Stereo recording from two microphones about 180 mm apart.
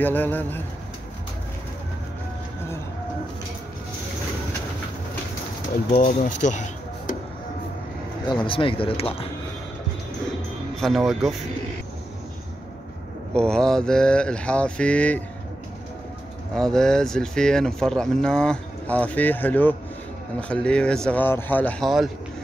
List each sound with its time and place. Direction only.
0.0 s speech: 10° left (ahead or behind)
5.9 s speech: 45° left (ahead or behind)
8.3 s speech: 25° left (ahead or behind)
10.8 s speech: centre (ahead or behind)
13.3 s speech: 5° left (ahead or behind)
16.5 s speech: 5° left (ahead or behind)